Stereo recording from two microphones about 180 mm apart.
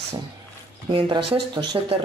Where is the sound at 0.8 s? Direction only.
25° right (ahead or behind).